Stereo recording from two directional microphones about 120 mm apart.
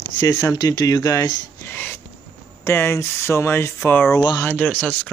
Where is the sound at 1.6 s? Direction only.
15° left (ahead or behind).